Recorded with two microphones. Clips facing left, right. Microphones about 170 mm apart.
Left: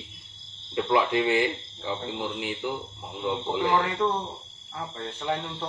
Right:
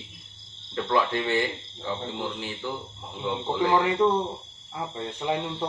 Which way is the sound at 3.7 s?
15° right (ahead or behind).